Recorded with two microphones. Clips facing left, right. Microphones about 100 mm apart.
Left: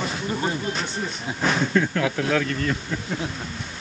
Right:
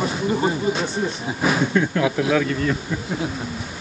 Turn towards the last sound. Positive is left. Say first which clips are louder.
# right 3 dB
turn(degrees=-10)  # may be behind; listen again after turning